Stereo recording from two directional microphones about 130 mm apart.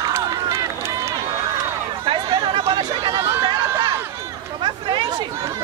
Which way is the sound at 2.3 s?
35° right (ahead or behind).